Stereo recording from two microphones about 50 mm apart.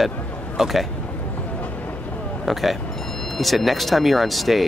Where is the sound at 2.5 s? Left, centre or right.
Centre.